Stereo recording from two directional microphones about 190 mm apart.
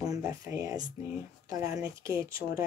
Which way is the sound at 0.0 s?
20° right (ahead or behind).